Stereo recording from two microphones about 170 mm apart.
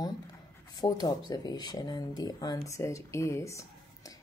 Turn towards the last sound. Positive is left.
turn(degrees=20)  # may be behind; listen again after turning